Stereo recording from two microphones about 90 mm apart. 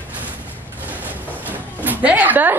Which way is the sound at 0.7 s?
20° right (ahead or behind).